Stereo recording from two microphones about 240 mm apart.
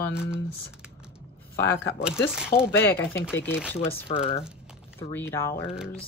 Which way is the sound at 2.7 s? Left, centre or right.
Centre.